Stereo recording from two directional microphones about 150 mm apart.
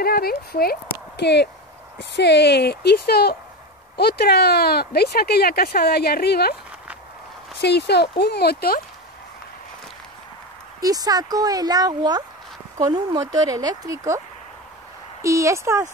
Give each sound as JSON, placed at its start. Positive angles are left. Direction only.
{"t": 0.0, "sound": "speech", "side_deg": 90}
{"t": 7.6, "sound": "speech", "side_deg": 90}
{"t": 10.8, "sound": "speech", "side_deg": -25}
{"t": 15.2, "sound": "speech", "side_deg": -20}